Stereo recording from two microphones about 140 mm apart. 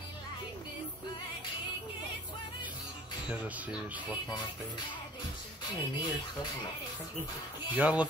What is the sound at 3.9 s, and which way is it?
Speech, 30° left (ahead or behind).